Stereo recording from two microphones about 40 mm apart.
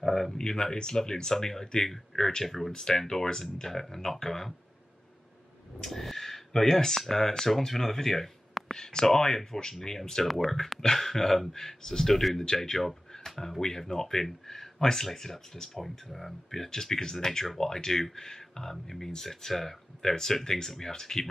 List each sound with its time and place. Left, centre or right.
0.0 s a sound: centre
0.3 s speech: centre
5.8 s speech: centre
10.2 s speech: centre
12.4 s speech: centre